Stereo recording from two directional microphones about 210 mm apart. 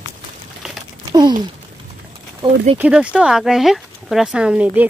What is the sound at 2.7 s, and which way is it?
Speech, 5° right (ahead or behind).